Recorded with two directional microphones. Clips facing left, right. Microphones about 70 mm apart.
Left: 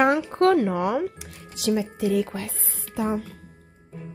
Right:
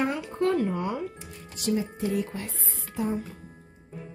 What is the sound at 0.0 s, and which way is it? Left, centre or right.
Speech, left.